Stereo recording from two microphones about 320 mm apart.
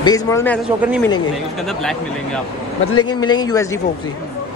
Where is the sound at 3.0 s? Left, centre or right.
Centre.